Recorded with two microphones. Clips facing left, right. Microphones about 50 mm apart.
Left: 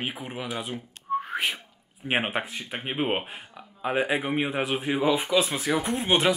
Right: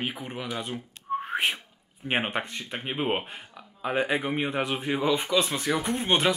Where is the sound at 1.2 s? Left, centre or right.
Right.